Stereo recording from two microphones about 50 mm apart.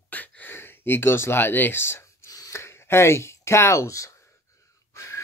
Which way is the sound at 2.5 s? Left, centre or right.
Left.